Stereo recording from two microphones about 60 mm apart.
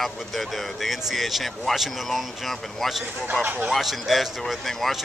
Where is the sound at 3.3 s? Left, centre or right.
Right.